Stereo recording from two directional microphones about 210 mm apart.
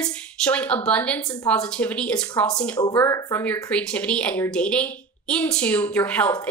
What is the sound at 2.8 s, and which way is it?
A woman's voice, 15° left (ahead or behind).